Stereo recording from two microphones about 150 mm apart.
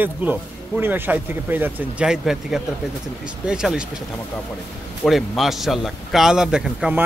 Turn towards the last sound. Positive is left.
turn(degrees=-5)  # may be behind; listen again after turning